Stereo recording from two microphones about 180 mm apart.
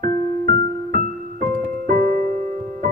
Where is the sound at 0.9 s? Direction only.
45° right (ahead or behind).